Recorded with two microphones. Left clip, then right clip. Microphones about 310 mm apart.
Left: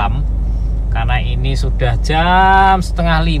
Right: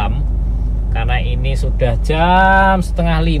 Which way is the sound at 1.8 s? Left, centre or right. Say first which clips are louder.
Even; left.